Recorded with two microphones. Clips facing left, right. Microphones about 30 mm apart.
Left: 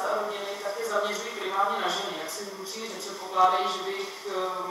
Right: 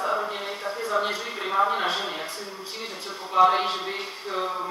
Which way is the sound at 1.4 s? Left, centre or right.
Right.